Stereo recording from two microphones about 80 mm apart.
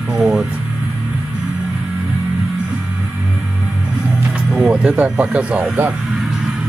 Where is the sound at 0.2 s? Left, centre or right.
Centre.